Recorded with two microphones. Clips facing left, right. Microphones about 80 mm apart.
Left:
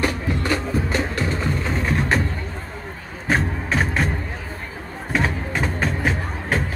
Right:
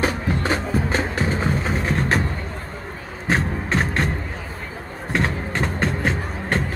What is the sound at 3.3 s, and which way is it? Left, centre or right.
Music, centre.